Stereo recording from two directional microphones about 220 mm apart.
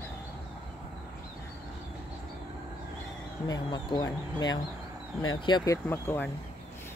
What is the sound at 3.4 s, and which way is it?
Speech, 20° left (ahead or behind).